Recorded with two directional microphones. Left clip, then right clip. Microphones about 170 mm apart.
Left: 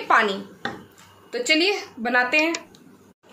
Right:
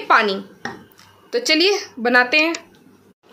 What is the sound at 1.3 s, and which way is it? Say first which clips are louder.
A woman's voice: right 4 dB; 65° right (ahead or behind).